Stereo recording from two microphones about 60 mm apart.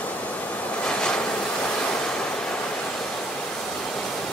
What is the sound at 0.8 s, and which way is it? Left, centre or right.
Vehicle, centre.